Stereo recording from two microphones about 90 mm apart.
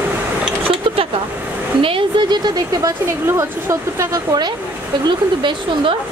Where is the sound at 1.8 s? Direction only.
75° right (ahead or behind); by 2.5 s 60° right (ahead or behind).